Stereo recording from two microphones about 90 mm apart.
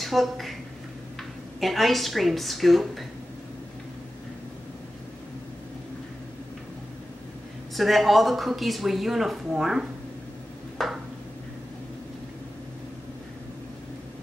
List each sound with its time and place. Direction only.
0.0 s speech: centre (ahead or behind)
1.6 s speech: centre (ahead or behind)
7.7 s speech: centre (ahead or behind)
10.8 s a sound: 5° left (ahead or behind)